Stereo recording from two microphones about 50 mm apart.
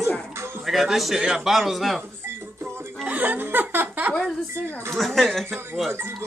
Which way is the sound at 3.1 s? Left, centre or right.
Right.